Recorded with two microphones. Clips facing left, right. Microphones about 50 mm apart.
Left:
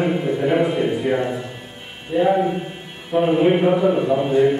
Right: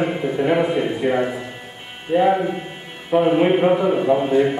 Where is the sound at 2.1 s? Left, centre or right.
Right.